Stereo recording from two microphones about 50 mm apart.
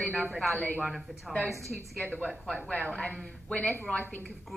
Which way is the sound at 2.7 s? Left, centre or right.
Left.